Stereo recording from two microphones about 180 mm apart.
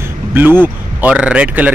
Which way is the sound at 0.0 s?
10° right (ahead or behind).